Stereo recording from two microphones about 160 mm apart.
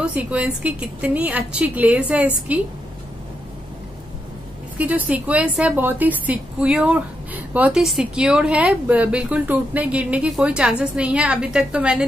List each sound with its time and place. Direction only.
0.0 s a woman's voice: 10° right (ahead or behind)
4.7 s a woman's voice: 10° right (ahead or behind)